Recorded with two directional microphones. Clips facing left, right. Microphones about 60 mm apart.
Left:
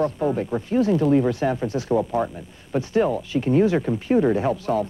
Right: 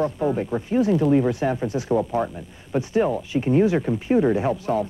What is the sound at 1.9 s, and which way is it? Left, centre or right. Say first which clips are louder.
Speech: left 1 dB; centre.